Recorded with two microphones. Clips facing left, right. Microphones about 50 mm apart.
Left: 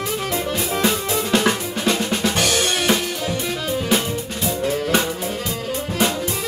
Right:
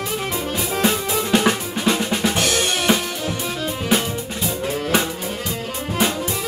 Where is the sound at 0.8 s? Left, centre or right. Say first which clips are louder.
Right 2 dB; centre.